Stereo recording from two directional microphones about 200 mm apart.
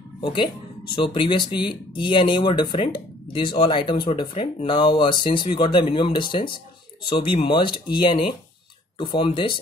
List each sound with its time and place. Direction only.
0.2 s speech: 25° left (ahead or behind)